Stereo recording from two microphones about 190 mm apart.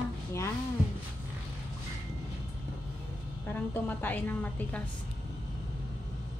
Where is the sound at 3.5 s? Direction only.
10° left (ahead or behind).